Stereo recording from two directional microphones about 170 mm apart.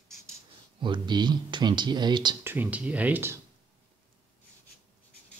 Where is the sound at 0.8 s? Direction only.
25° right (ahead or behind).